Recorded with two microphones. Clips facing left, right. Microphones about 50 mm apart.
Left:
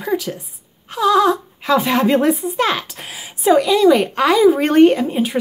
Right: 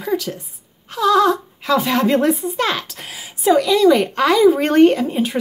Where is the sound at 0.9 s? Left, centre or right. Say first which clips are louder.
Even; centre.